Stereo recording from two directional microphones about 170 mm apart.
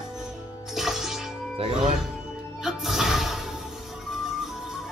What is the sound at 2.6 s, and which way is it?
Music, centre (ahead or behind).